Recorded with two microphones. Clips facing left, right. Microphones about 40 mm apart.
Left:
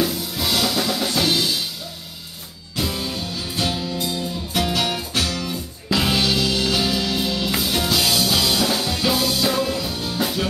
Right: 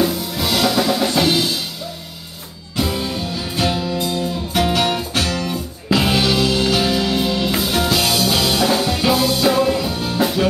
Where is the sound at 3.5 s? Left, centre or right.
Centre.